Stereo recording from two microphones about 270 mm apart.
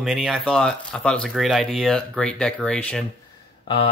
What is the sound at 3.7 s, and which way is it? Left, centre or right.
Speech, centre.